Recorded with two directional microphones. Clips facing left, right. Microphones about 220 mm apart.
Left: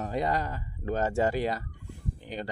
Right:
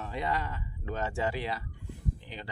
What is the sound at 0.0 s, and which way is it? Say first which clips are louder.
Speech: left 4 dB; 40° left (ahead or behind).